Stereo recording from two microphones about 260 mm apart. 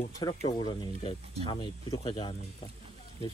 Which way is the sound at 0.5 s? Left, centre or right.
Centre.